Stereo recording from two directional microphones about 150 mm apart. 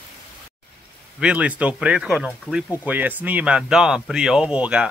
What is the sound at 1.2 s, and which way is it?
Speech, 10° right (ahead or behind).